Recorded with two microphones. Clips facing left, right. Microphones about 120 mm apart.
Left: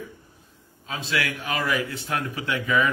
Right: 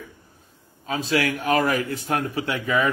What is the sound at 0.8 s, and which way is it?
Speech, 40° right (ahead or behind).